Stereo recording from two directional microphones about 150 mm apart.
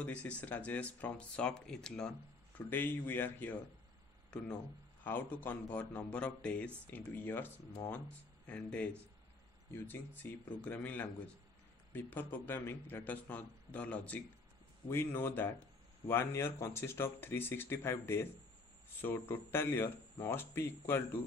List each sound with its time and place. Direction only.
0.0 s speech: 10° left (ahead or behind)
5.0 s speech: 15° left (ahead or behind)